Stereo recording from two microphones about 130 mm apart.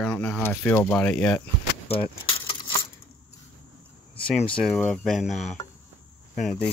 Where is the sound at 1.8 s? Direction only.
45° left (ahead or behind).